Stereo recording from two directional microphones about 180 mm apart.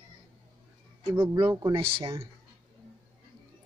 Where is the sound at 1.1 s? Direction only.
25° right (ahead or behind).